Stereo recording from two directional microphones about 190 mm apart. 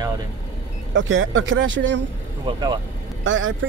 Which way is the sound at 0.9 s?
80° right.